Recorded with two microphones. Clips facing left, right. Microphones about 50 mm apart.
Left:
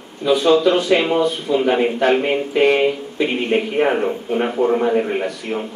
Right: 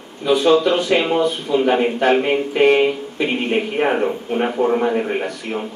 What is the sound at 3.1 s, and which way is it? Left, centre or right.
Speech, right.